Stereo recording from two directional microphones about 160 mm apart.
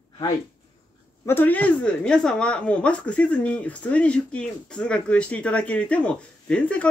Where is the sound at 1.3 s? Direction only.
10° left (ahead or behind).